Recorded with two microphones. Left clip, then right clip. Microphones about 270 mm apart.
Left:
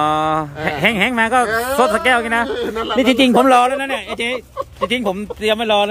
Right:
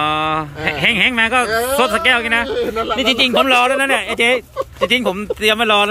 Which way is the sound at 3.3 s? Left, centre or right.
Left.